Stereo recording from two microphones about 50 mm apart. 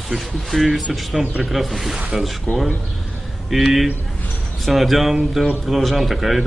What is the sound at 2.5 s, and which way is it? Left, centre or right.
Speech, left.